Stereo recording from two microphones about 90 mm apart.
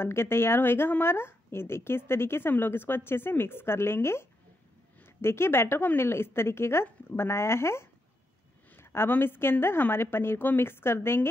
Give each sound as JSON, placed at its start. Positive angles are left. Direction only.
{"t": 0.0, "sound": "speech", "side_deg": 25}